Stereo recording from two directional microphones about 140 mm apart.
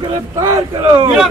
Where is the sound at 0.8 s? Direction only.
40° right (ahead or behind).